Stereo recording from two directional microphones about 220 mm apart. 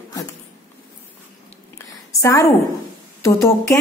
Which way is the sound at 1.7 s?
15° left (ahead or behind).